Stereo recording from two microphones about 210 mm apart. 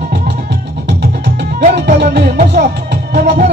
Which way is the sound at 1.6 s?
45° right (ahead or behind).